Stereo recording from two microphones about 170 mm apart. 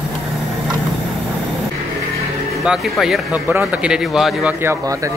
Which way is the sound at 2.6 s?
Centre (ahead or behind).